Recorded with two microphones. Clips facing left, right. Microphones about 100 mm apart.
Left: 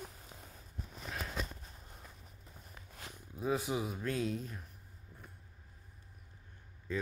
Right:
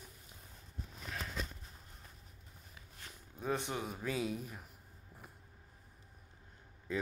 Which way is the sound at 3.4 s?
5° left (ahead or behind).